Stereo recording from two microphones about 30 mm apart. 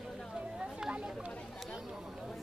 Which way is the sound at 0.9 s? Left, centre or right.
Right.